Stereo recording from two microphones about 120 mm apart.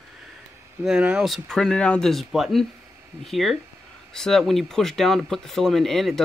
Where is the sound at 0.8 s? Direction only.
5° right (ahead or behind).